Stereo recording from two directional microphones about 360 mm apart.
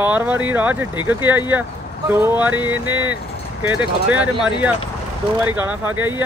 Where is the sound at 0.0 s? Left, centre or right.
Centre.